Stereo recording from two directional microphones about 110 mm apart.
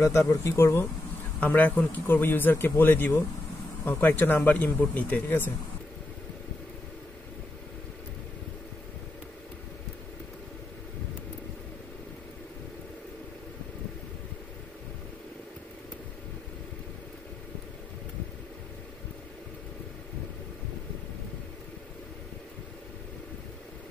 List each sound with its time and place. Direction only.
0.0 s speech: 30° left (ahead or behind)
1.4 s speech: 15° left (ahead or behind)